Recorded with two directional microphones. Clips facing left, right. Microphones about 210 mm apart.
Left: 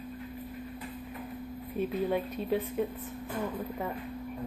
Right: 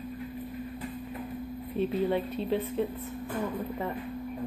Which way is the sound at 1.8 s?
10° left (ahead or behind).